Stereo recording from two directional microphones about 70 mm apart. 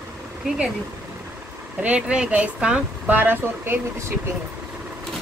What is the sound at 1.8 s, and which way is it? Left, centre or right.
Speech, centre.